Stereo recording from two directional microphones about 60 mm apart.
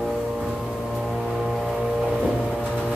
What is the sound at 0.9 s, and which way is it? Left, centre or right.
Music, centre.